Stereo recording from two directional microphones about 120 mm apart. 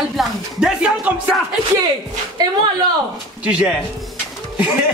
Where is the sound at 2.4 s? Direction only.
35° right (ahead or behind).